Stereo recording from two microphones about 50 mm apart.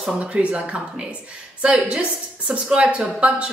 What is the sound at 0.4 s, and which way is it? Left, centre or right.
A woman's voice, right.